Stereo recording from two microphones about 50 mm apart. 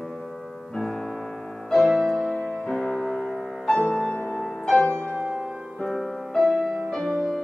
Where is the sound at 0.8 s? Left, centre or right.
Centre.